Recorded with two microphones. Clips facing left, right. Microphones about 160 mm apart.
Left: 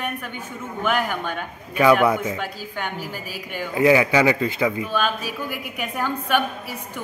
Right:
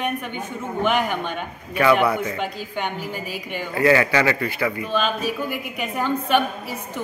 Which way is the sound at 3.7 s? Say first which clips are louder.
Left 1 dB; 15° left (ahead or behind).